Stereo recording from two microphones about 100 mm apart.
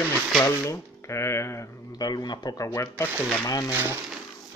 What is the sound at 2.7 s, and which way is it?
Speech, 25° left (ahead or behind).